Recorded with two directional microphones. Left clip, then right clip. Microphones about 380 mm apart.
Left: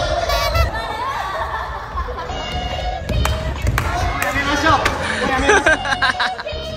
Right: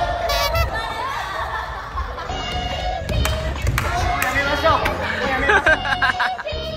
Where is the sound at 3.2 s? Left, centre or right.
Centre.